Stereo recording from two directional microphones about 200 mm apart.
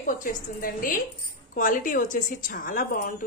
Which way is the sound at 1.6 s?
45° left (ahead or behind).